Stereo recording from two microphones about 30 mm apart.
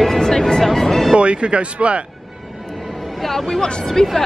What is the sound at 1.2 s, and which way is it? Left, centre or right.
Speech, right.